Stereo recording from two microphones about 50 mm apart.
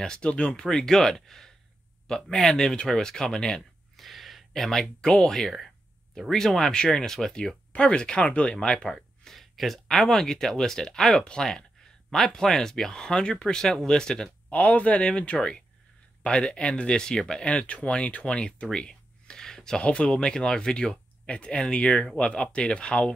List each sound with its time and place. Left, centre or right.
0.0 s speech: centre
3.9 s a sound: centre
5.0 s speech: centre
7.7 s speech: centre
14.5 s speech: left